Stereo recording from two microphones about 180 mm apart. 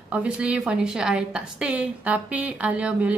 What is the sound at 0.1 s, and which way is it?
A woman's voice, 5° right (ahead or behind).